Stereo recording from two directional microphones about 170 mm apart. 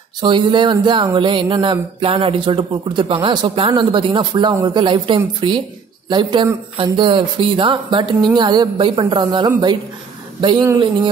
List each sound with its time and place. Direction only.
0.2 s speech: 30° right (ahead or behind)